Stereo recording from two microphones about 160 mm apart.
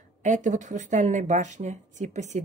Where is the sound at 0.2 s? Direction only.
50° right (ahead or behind).